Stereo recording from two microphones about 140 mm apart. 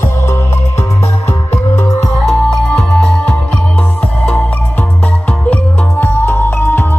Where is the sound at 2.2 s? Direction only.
10° left (ahead or behind).